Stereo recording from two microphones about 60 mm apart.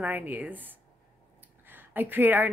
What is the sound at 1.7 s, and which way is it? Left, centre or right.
Speech, right.